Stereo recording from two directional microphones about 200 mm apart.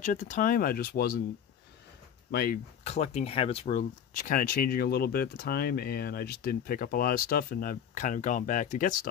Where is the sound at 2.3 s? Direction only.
50° left (ahead or behind).